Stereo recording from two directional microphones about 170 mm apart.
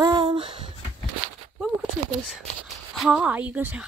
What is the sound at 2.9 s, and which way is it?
Speech, 5° right (ahead or behind).